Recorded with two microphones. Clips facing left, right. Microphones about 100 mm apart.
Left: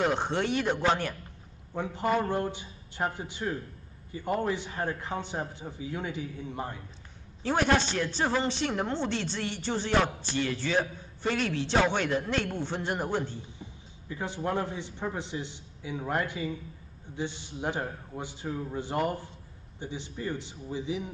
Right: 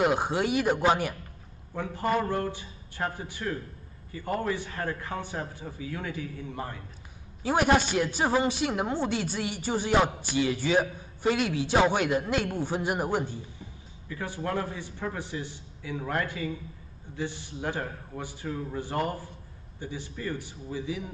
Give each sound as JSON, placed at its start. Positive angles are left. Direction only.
{"t": 0.0, "sound": "a woman's voice", "side_deg": -10}
{"t": 2.2, "sound": "a man's voice", "side_deg": 20}
{"t": 7.4, "sound": "a woman's voice", "side_deg": -10}
{"t": 14.0, "sound": "a man's voice", "side_deg": 20}